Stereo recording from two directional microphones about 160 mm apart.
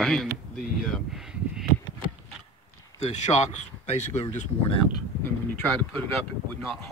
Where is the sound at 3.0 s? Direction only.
45° left (ahead or behind).